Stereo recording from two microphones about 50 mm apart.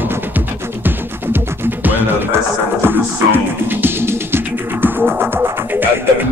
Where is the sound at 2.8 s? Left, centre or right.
Right.